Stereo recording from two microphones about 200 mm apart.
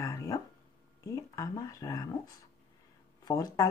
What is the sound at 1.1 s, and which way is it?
Speech, 15° left (ahead or behind).